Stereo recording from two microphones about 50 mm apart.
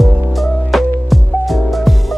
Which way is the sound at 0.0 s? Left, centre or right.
Centre.